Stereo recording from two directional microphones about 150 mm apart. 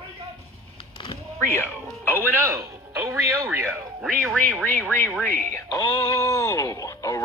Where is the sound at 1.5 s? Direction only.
15° left (ahead or behind).